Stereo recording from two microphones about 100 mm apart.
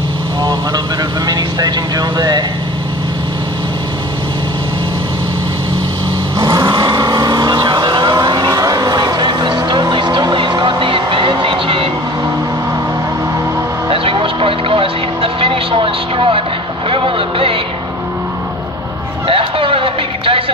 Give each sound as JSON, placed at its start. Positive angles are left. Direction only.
{"t": 1.2, "sound": "speech", "side_deg": -40}
{"t": 6.3, "sound": "vehicle", "side_deg": -40}
{"t": 13.8, "sound": "vehicle", "side_deg": -60}
{"t": 19.2, "sound": "music", "side_deg": -65}